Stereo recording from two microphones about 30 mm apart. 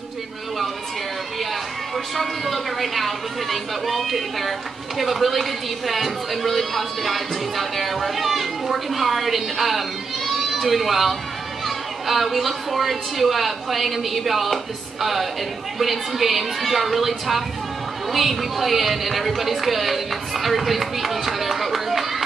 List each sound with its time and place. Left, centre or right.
2.1 s speech: centre